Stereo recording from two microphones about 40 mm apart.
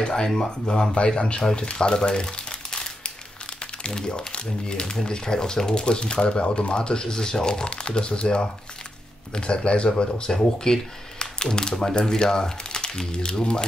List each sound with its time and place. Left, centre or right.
0.0 s speech: centre
3.8 s speech: left